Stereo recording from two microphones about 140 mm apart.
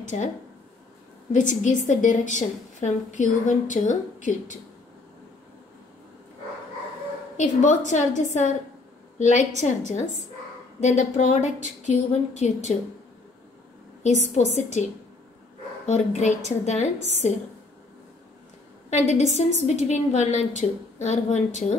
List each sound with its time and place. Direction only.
0.0 s speech: 65° left (ahead or behind)
1.3 s a woman's voice: 65° left (ahead or behind)
7.3 s a woman's voice: 60° left (ahead or behind)
14.0 s a woman's voice: 55° left (ahead or behind)
18.9 s a woman's voice: 55° left (ahead or behind)